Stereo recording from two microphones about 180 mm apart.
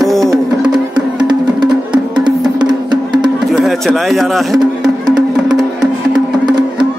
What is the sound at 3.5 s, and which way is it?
Speech, centre (ahead or behind).